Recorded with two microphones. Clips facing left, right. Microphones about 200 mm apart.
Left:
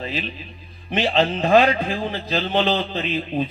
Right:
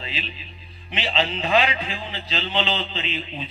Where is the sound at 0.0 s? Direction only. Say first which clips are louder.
Left 6 dB; 50° left (ahead or behind).